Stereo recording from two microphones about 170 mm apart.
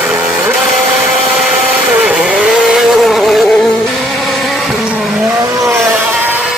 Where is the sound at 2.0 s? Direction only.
5° right (ahead or behind).